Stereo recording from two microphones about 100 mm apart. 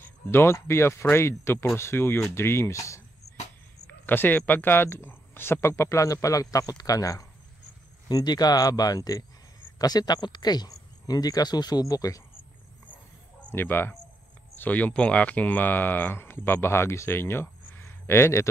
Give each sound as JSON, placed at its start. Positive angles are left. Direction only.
{"t": 0.0, "sound": "speech", "side_deg": 25}
{"t": 4.0, "sound": "speech", "side_deg": 20}
{"t": 13.4, "sound": "speech", "side_deg": 20}